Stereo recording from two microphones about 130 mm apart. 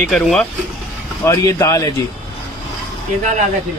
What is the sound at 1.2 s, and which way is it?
Speech, 20° left (ahead or behind).